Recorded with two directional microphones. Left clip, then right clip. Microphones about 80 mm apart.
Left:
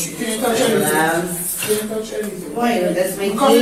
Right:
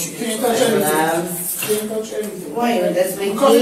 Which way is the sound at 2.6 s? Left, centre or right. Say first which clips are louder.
Right 1 dB; centre.